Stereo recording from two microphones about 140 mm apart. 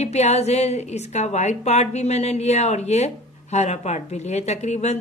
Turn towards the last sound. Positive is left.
turn(degrees=55)  # may be behind; listen again after turning